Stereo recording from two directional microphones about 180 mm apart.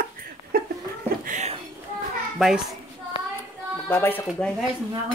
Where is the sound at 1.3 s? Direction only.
40° right (ahead or behind).